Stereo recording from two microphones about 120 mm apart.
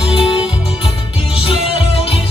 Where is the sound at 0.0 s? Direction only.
50° left (ahead or behind).